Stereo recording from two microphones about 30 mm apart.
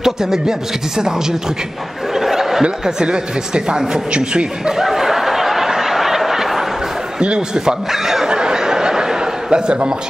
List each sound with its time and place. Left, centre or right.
0.0 s speech: centre
2.1 s snicker: centre
3.1 s speech: right
4.7 s a sound: centre
7.2 s speech: right
7.9 s speech: centre
8.3 s a sound: right